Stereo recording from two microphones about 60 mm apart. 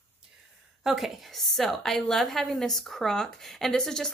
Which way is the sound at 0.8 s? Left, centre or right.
Centre.